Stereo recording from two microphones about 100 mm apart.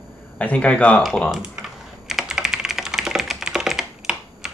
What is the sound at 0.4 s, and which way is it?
Speech, 15° left (ahead or behind).